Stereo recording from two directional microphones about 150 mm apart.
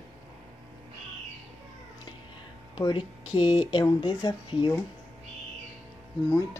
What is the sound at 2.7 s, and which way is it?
Speech, 30° left (ahead or behind).